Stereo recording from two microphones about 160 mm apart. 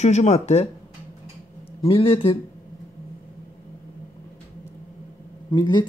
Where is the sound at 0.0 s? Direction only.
45° left (ahead or behind).